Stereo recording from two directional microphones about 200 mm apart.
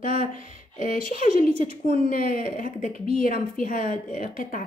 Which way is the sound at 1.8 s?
45° left (ahead or behind).